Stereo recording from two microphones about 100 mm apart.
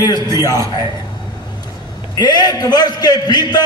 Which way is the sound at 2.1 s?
45° left (ahead or behind).